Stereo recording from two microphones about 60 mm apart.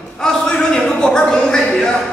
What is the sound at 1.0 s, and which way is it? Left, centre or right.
Speech, centre.